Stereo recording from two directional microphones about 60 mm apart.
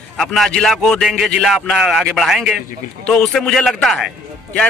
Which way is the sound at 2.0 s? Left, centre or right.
Centre.